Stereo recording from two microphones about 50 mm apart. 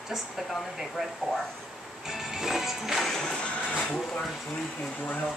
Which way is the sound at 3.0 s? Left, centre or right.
Centre.